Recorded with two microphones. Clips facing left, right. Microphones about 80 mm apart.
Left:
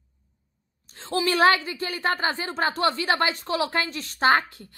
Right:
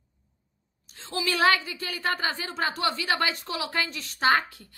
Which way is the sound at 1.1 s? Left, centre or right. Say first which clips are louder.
Left 4 dB; left.